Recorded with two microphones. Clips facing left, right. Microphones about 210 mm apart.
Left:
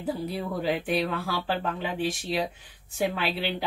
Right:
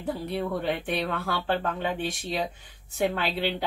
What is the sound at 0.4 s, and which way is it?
Speech, 5° left (ahead or behind).